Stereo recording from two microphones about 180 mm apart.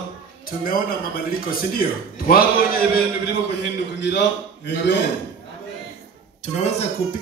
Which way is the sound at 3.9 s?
75° left (ahead or behind).